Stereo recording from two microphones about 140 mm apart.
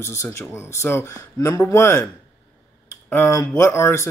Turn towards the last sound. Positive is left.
turn(degrees=20)  # may be behind; listen again after turning